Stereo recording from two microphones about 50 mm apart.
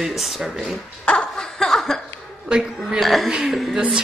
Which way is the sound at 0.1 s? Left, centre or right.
Centre.